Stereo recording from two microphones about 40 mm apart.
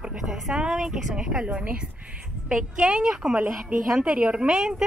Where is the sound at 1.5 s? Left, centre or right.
Right.